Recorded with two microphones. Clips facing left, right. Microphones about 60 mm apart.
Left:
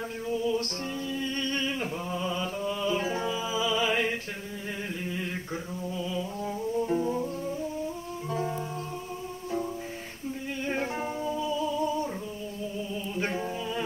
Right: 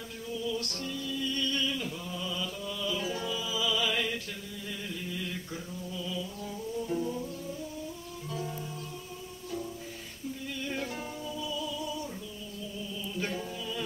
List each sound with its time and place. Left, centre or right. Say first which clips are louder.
0.3 s music: left 6 dB; left
5.0 s a sound: left 3 dB; left
5.9 s music: left 4 dB; left
8.3 s music: left 6 dB; left
10.6 s music: left 6 dB; left
13.1 s a capella: left 4 dB; left